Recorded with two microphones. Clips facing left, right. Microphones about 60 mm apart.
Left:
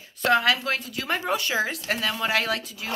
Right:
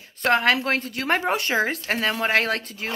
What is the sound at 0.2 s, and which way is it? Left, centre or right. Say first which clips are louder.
A woman's voice: right 1 dB; right.